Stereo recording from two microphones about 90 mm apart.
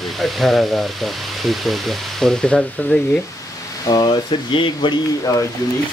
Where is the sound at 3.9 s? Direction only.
60° left (ahead or behind).